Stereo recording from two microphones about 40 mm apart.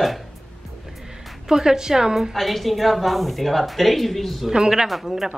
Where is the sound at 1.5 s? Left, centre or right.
Centre.